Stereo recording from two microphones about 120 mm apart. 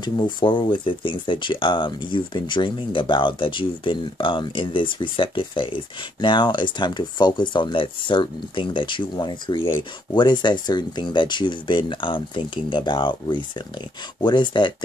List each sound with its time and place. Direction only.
0.0 s speech: 40° left (ahead or behind)